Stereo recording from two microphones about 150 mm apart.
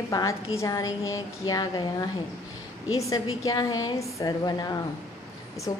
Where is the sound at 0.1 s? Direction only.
20° left (ahead or behind).